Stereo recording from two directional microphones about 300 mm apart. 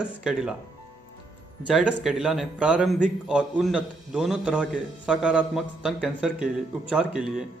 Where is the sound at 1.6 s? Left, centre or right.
Centre.